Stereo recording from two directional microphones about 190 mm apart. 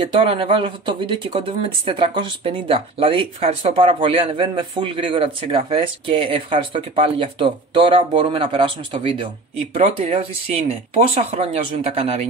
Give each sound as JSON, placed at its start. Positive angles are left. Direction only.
{"t": 0.0, "sound": "speech", "side_deg": -25}